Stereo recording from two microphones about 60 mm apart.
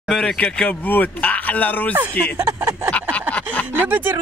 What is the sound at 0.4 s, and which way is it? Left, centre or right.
Speech, centre.